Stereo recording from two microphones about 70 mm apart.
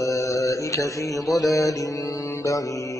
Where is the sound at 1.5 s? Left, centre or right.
Left.